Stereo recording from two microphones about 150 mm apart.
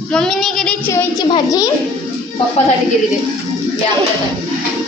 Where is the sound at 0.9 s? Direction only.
20° left (ahead or behind).